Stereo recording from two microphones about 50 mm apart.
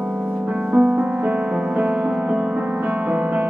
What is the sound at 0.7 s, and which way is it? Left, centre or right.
Music, right.